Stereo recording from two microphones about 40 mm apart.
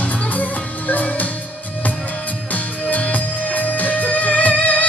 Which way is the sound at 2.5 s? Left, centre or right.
Left.